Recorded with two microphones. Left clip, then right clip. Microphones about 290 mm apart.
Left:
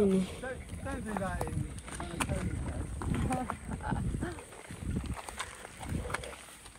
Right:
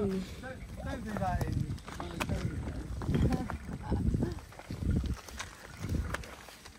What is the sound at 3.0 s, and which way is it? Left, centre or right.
Wild animals, centre.